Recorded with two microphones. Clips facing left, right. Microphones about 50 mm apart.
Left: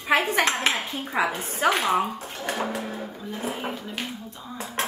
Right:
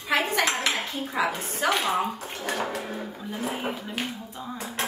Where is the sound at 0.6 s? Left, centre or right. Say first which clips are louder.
Left 2 dB; left.